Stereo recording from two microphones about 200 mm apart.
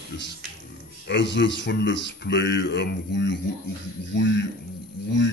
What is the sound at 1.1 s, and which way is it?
Speech, 65° left (ahead or behind).